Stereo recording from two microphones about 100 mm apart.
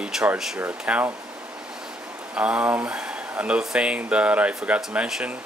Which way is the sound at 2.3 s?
10° right (ahead or behind).